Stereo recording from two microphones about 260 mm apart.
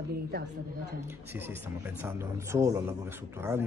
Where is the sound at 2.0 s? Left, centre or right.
Centre.